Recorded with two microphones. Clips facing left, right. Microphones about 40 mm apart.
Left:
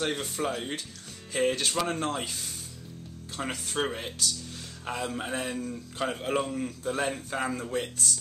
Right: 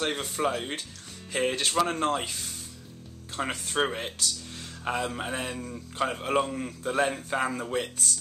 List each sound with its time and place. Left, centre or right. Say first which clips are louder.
0.0 s a man's voice: right 2 dB; centre
3.4 s a man's voice: right 3 dB; centre